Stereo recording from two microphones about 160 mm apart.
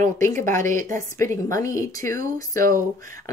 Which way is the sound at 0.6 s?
55° right (ahead or behind).